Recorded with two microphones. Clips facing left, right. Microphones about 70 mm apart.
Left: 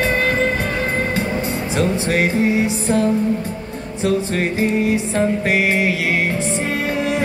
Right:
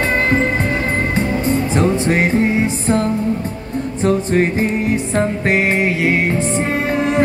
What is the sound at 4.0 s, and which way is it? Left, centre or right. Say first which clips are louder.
Music: right 3 dB; right.